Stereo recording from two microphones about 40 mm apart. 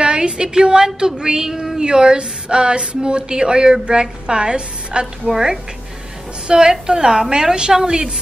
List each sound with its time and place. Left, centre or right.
0.0 s a woman's voice: right
6.4 s a woman's voice: centre